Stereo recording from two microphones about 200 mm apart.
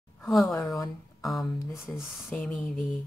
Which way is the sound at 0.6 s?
15° left (ahead or behind).